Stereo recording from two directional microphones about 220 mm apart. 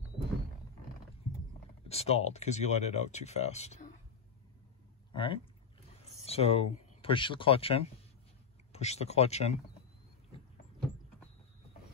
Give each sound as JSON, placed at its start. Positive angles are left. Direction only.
{"t": 1.9, "sound": "speech", "side_deg": 30}
{"t": 5.1, "sound": "speech", "side_deg": 25}